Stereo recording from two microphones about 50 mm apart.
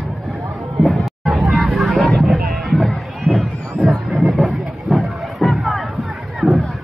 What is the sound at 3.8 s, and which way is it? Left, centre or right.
Train, centre.